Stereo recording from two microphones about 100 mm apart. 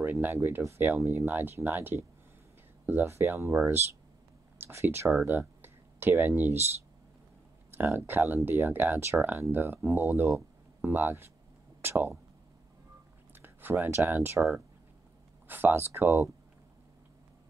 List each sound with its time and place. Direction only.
0.0 s speech: 20° right (ahead or behind)
4.6 s speech: 25° right (ahead or behind)
7.7 s speech: 20° right (ahead or behind)
13.3 s speech: 20° right (ahead or behind)